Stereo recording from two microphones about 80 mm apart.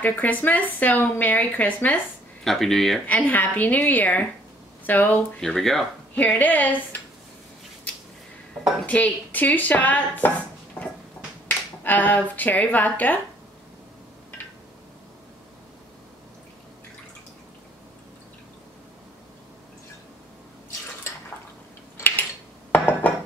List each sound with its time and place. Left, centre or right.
0.0 s speech: left
2.4 s speech: centre
3.1 s speech: left
5.4 s speech: centre
6.1 s speech: left
8.8 s speech: centre
21.9 s cutlery: left
22.7 s dishes: left